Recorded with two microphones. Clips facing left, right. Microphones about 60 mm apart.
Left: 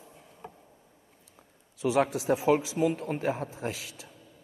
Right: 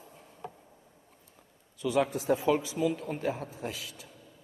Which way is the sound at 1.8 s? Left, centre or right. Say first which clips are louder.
Left 2 dB; left.